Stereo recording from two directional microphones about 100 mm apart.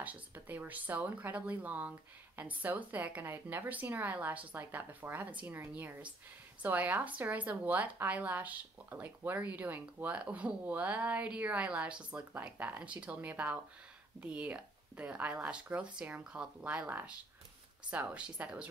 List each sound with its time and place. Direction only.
0.0 s a woman's voice: 15° right (ahead or behind)